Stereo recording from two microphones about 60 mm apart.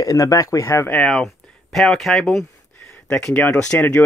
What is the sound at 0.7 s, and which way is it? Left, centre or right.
Speech, left.